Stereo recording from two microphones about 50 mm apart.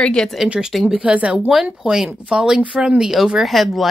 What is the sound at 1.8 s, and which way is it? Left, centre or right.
Speech, centre.